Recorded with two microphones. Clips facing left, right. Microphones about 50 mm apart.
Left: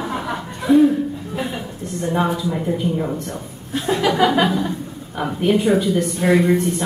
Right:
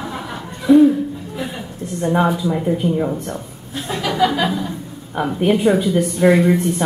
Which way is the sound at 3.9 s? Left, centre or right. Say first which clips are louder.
Left 1 dB; left.